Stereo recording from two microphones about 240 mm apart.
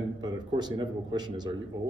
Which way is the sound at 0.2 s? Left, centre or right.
Centre.